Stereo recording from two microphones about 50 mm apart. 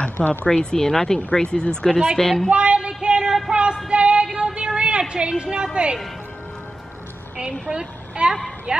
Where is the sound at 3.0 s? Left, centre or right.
Centre.